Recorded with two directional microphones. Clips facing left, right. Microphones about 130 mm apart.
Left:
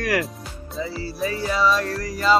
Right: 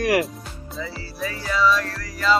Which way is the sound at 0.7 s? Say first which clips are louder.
Left 5 dB; 30° left (ahead or behind).